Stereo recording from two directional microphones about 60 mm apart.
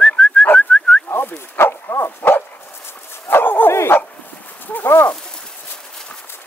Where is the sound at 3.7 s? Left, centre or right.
Left.